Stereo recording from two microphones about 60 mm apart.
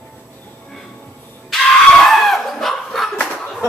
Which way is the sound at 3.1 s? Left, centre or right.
Left.